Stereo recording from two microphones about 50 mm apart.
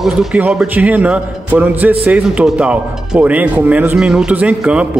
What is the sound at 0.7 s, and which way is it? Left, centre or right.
A man's voice, right.